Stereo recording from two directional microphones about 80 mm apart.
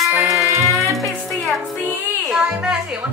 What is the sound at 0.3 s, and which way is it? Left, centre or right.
Music, right.